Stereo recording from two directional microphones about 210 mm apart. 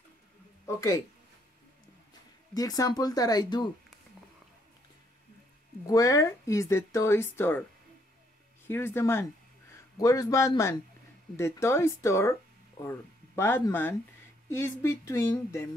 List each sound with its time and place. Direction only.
0.7 s speech: 15° left (ahead or behind)
2.5 s speech: 15° left (ahead or behind)
5.9 s speech: 15° left (ahead or behind)
8.6 s a man's voice: 10° left (ahead or behind)